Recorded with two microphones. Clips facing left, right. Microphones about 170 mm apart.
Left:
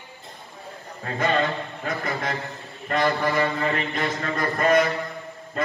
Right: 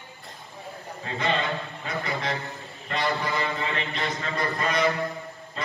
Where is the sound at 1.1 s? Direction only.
45° left (ahead or behind).